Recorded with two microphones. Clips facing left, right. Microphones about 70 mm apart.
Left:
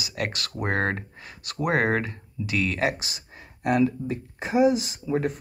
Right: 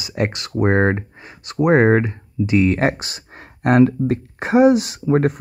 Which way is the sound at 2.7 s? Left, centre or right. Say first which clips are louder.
Right 6 dB; right.